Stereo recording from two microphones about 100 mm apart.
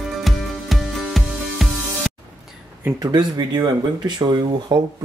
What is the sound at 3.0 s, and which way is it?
Speech, 45° right (ahead or behind).